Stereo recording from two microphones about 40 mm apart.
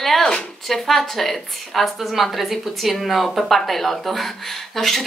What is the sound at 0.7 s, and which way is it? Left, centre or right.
A woman's voice, centre.